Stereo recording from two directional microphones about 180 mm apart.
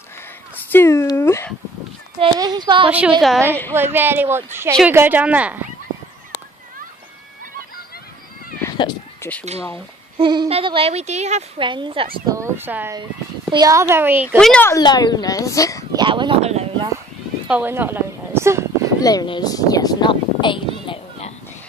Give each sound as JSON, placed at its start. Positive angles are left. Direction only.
{"t": 0.7, "sound": "a sound", "side_deg": 15}
{"t": 2.1, "sound": "speech", "side_deg": -25}
{"t": 2.9, "sound": "a woman's voice", "side_deg": -5}
{"t": 3.4, "sound": "speech", "side_deg": 10}
{"t": 3.7, "sound": "a woman's voice", "side_deg": -10}
{"t": 8.6, "sound": "cat", "side_deg": 20}
{"t": 10.1, "sound": "speech", "side_deg": -25}
{"t": 11.6, "sound": "speech", "side_deg": -25}
{"t": 12.3, "sound": "a woman's voice", "side_deg": -15}
{"t": 14.4, "sound": "speech", "side_deg": 10}
{"t": 14.8, "sound": "a woman's voice", "side_deg": 25}
{"t": 15.9, "sound": "speech", "side_deg": -25}
{"t": 17.5, "sound": "a sound", "side_deg": -10}
{"t": 19.0, "sound": "a sound", "side_deg": 25}